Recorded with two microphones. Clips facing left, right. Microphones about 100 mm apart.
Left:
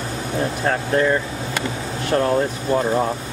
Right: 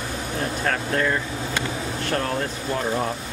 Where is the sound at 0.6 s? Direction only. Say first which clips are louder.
Left 5 dB; 20° left (ahead or behind).